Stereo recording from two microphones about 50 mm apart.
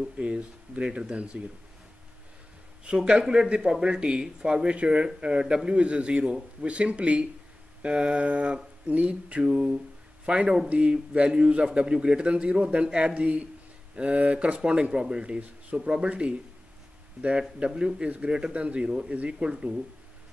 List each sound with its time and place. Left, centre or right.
0.0 s a man's voice: right
2.8 s a man's voice: centre
9.4 s a sound: centre
10.2 s a man's voice: right